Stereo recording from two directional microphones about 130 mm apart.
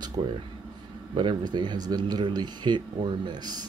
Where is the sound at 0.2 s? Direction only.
40° right (ahead or behind).